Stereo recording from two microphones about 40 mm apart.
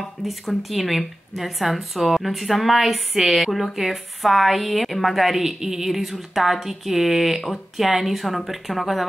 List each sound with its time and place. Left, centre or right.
0.2 s a woman's voice: centre